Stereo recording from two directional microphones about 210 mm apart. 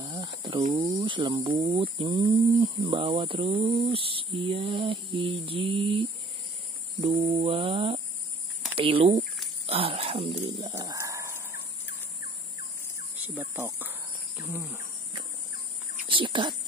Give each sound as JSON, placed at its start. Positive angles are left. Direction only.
{"t": 0.0, "sound": "a sound", "side_deg": -20}
{"t": 0.7, "sound": "speech", "side_deg": -35}
{"t": 9.7, "sound": "dog", "side_deg": -25}
{"t": 10.8, "sound": "a sound", "side_deg": -15}
{"t": 13.3, "sound": "cricket", "side_deg": -10}
{"t": 16.1, "sound": "speech", "side_deg": -25}